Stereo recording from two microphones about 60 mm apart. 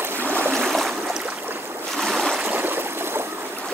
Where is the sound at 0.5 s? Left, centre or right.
Centre.